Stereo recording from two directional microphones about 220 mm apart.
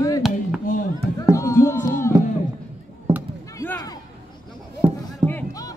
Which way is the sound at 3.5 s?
10° left (ahead or behind).